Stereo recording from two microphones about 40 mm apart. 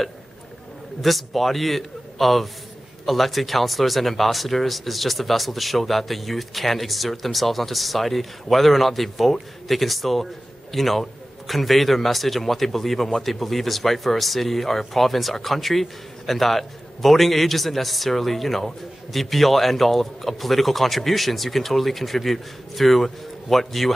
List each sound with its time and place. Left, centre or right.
1.0 s a man's voice: centre